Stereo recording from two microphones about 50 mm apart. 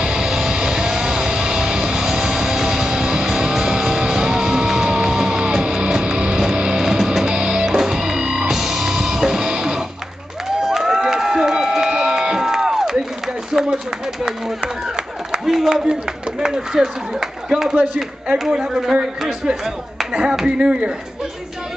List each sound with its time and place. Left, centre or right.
0.0 s music: centre
10.6 s a sound: centre
15.4 s a sound: centre
16.3 s a man's voice: centre
19.6 s speech: centre
20.4 s speech: centre